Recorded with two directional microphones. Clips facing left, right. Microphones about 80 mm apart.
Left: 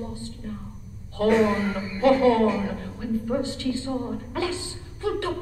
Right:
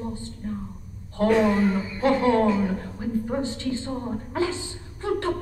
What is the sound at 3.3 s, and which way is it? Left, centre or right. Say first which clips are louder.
A man's voice: left 1 dB; right.